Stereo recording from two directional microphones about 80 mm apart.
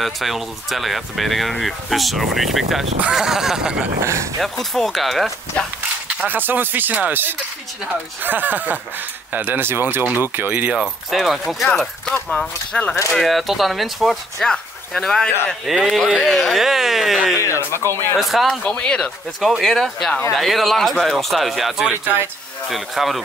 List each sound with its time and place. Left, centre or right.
0.0 s speech: centre
4.0 s speech: right
4.4 s speech: centre
6.2 s speech: right
11.1 s speech: centre
12.1 s speech: centre
13.1 s speech: centre
17.4 s speech: left
18.1 s speech: centre
18.7 s speech: centre